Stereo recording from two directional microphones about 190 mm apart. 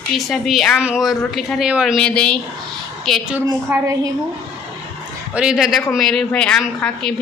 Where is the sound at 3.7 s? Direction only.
10° right (ahead or behind).